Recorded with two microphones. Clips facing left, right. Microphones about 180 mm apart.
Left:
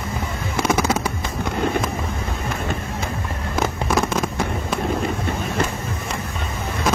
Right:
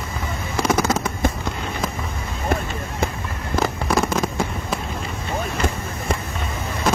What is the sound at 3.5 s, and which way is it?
Fireworks, centre (ahead or behind).